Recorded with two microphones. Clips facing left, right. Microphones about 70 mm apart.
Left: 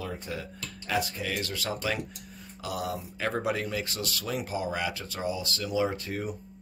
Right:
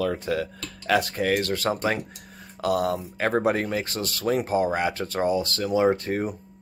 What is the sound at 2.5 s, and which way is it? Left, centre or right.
Speech, right.